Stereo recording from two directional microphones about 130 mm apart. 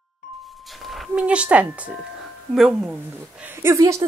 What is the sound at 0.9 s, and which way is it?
Speech, 5° right (ahead or behind).